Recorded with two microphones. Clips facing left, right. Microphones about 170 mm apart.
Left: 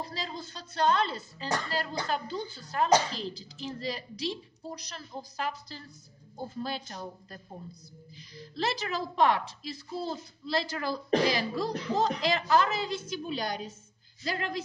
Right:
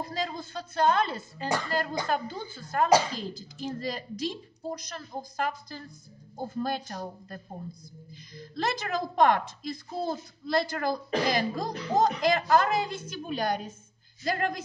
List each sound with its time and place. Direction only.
0.0 s speech: 50° right (ahead or behind)